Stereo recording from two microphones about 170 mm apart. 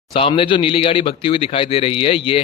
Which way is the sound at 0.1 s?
30° left (ahead or behind).